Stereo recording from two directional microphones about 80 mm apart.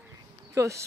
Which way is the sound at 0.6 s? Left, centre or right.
Right.